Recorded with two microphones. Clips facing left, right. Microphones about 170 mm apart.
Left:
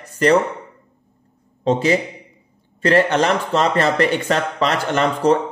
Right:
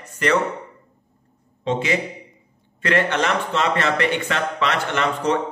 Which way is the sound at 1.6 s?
35° left (ahead or behind).